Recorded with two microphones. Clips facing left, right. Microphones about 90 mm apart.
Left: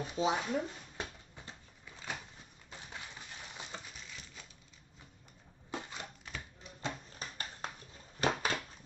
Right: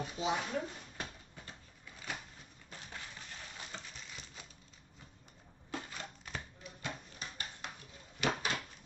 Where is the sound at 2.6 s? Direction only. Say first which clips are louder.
Left 1 dB; 20° left (ahead or behind).